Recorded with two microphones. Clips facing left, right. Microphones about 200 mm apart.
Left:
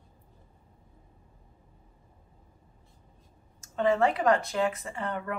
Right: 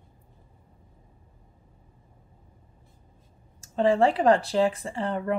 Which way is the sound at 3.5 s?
30° right (ahead or behind).